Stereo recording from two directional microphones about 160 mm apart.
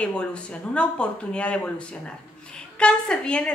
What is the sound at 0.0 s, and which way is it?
Speech, 5° left (ahead or behind).